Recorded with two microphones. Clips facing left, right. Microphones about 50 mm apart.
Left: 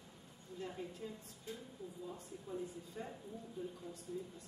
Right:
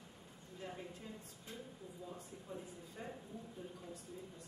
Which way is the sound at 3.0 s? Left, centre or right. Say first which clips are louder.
Left 1 dB; centre.